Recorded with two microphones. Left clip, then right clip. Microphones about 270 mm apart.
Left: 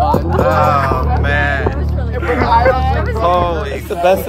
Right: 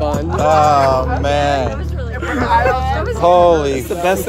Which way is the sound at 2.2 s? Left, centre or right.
Centre.